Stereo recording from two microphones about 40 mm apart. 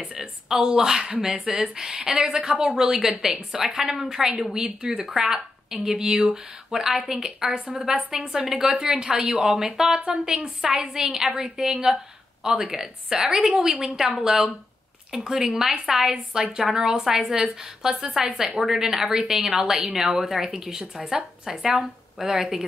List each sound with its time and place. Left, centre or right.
0.0 s a sound: right
0.5 s a woman's voice: centre
13.5 s a woman's voice: right
13.7 s a woman's voice: centre